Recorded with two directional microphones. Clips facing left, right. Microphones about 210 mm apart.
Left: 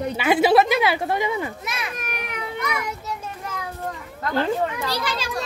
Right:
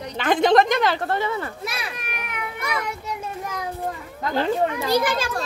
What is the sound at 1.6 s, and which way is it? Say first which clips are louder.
Speech: right 1 dB; 30° right (ahead or behind).